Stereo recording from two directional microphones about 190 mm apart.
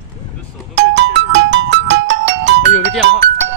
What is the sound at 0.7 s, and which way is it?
Music, 70° right (ahead or behind).